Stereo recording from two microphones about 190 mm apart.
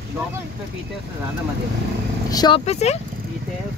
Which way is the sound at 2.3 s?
20° left (ahead or behind).